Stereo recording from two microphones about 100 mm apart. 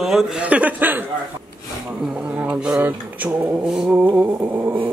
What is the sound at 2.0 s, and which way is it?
Speech, 10° right (ahead or behind).